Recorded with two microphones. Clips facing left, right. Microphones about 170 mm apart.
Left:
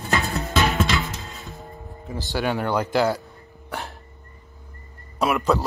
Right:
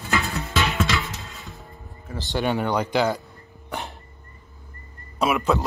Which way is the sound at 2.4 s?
Centre (ahead or behind).